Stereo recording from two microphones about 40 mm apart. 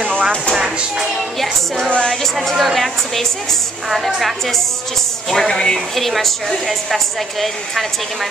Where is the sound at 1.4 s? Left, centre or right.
Centre.